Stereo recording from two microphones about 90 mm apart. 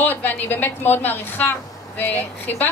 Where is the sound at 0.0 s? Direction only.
20° left (ahead or behind).